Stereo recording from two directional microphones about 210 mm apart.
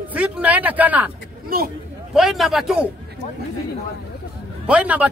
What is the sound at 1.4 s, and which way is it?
Speech, 45° right (ahead or behind).